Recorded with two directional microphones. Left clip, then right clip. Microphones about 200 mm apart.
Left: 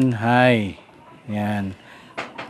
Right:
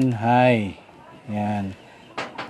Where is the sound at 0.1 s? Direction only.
15° left (ahead or behind).